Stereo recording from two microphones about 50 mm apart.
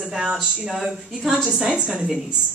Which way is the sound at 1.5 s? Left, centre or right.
Centre.